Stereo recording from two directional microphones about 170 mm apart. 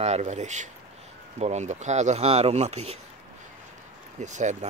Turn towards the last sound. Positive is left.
turn(degrees=-45)  # may be behind; listen again after turning